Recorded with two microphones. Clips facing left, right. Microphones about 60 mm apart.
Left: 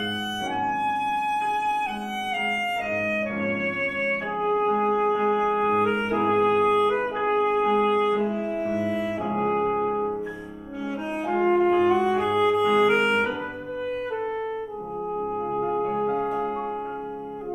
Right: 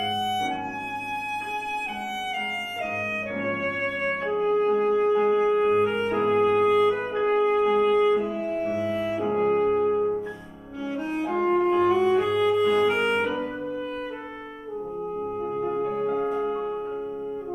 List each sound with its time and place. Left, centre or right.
0.5 s music: left
2.9 s music: centre
4.3 s music: centre
15.2 s french horn: centre
15.8 s music: centre
16.1 s music: centre